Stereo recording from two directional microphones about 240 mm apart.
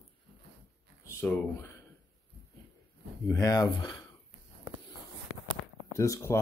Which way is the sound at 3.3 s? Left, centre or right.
Centre.